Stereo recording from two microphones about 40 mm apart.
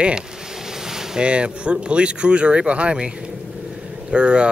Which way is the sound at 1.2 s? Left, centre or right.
Right.